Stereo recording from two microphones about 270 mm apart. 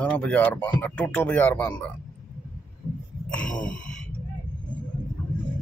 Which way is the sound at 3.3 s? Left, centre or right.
Centre.